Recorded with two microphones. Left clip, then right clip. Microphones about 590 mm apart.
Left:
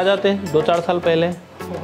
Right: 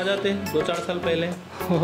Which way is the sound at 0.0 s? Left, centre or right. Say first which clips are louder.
Left 7 dB; centre.